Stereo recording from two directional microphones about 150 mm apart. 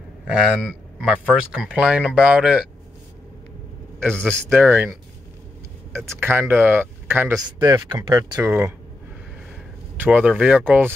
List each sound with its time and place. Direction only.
1.0 s speech: 5° right (ahead or behind)
4.1 s a man's voice: 5° left (ahead or behind)
4.5 s speech: 15° right (ahead or behind)
6.1 s speech: 15° right (ahead or behind)
7.6 s speech: 25° right (ahead or behind)
8.4 s speech: 15° right (ahead or behind)
9.9 s speech: 10° right (ahead or behind)